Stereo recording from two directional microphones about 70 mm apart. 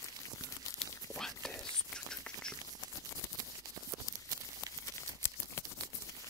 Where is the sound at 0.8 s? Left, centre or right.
Centre.